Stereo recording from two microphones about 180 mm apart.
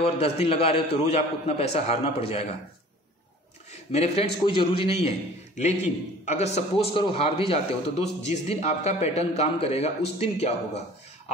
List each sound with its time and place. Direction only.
0.0 s a man's voice: 35° left (ahead or behind)
3.9 s a man's voice: 35° left (ahead or behind)